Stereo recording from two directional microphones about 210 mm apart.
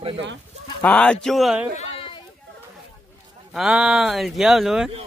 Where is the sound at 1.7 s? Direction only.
25° left (ahead or behind).